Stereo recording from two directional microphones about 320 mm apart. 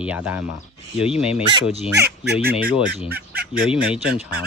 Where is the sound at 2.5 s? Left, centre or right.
Centre.